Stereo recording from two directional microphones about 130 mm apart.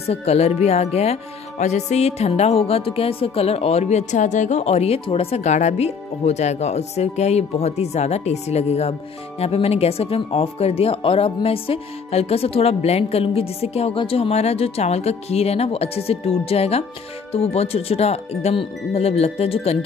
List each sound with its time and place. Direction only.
0.1 s speech: 55° left (ahead or behind)